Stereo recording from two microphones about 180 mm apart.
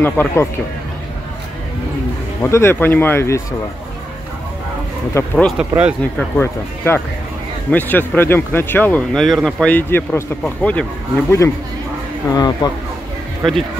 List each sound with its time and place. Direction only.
0.0 s speech: 10° left (ahead or behind)
2.4 s speech: 15° left (ahead or behind)
5.1 s speech: 10° left (ahead or behind)
5.6 s speech: 5° right (ahead or behind)
6.1 s speech: 10° left (ahead or behind)